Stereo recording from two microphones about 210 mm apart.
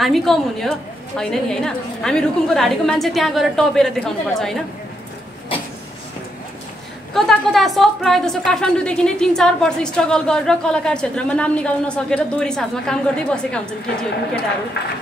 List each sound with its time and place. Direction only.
0.0 s a woman's voice: centre (ahead or behind)
7.2 s a woman's voice: centre (ahead or behind)
13.8 s speech: 50° left (ahead or behind)